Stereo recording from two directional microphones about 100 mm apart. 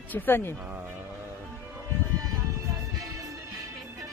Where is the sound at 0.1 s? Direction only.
20° left (ahead or behind).